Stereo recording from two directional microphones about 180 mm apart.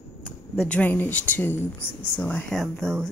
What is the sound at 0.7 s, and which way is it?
A woman's voice, 10° left (ahead or behind).